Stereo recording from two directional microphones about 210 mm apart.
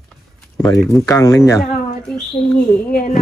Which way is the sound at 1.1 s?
15° left (ahead or behind).